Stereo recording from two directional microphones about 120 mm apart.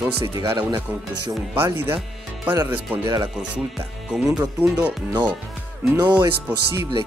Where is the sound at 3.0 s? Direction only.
30° right (ahead or behind).